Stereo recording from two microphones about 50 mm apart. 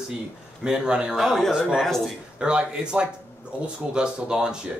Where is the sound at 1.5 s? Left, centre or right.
Centre.